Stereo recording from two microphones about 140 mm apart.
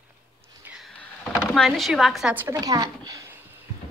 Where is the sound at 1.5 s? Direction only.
Centre (ahead or behind).